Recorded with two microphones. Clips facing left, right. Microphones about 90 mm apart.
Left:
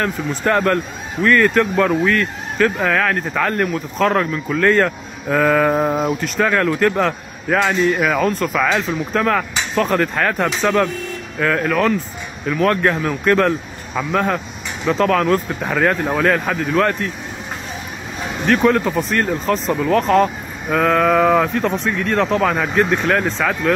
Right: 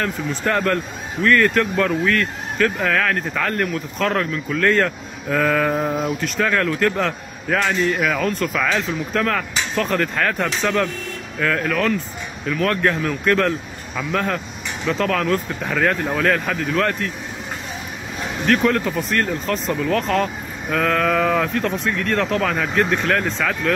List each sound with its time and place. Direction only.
0.0 s speech: 35° left (ahead or behind)
1.2 s speech: 25° left (ahead or behind)
14.9 s speech: 40° left (ahead or behind)
18.5 s speech: 25° left (ahead or behind)